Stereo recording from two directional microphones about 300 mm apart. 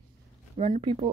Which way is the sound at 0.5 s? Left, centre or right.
Centre.